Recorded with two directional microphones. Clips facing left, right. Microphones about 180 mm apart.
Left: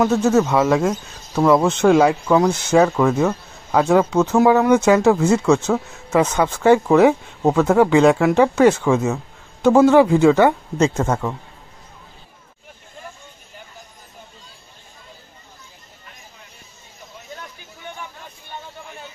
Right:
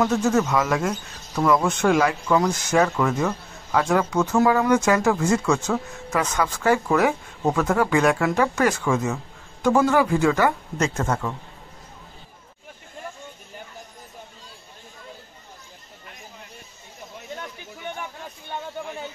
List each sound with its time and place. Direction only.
0.0 s speech: 20° left (ahead or behind)